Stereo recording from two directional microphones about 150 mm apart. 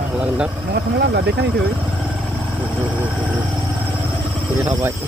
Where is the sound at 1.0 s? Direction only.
90° right.